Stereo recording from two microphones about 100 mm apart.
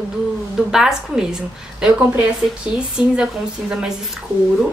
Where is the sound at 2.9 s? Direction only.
5° right (ahead or behind).